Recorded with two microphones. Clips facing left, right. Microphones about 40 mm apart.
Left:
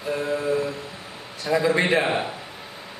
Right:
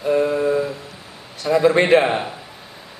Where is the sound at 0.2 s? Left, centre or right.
Right.